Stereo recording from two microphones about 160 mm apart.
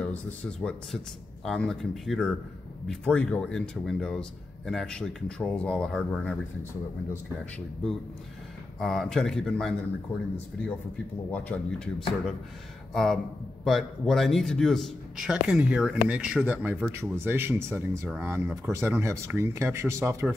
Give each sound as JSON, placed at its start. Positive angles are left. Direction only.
{"t": 0.0, "sound": "speech", "side_deg": 5}
{"t": 8.7, "sound": "speech", "side_deg": 0}
{"t": 11.3, "sound": "speech", "side_deg": 10}